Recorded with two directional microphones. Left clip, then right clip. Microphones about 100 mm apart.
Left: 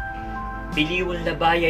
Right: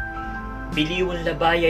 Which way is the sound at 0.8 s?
30° right (ahead or behind).